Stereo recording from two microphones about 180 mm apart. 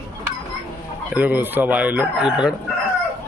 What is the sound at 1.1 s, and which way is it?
Speech, 10° right (ahead or behind).